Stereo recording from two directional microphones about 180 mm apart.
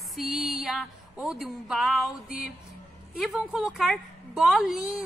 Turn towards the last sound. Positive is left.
turn(degrees=-5)  # may be behind; listen again after turning